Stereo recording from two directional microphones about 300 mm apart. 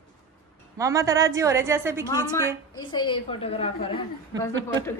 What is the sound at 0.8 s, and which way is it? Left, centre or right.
Speech, centre.